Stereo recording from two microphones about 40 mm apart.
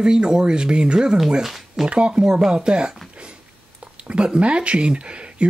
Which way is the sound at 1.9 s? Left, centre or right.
Right.